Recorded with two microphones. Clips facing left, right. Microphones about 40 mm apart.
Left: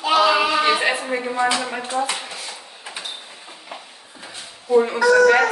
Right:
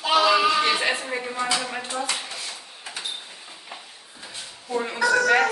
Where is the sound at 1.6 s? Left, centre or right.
Left.